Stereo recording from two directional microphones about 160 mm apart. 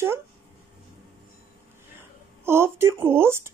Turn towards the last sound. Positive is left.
turn(degrees=-15)  # may be behind; listen again after turning